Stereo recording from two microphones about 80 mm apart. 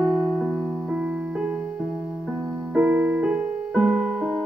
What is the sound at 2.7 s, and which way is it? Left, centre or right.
Music, right.